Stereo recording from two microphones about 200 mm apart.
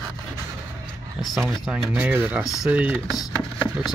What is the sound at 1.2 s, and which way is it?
Speech, centre (ahead or behind).